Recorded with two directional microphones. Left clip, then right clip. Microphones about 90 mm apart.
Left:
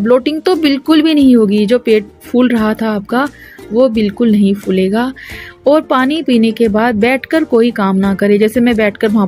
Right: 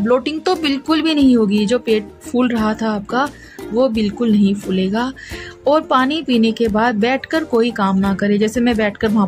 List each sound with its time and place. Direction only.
0.0 s a woman's voice: 30° left (ahead or behind)